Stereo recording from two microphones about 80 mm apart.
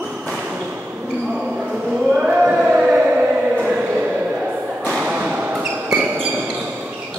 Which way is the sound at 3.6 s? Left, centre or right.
Centre.